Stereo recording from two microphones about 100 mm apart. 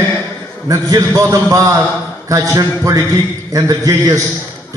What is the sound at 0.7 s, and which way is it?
A man's voice, 35° right (ahead or behind).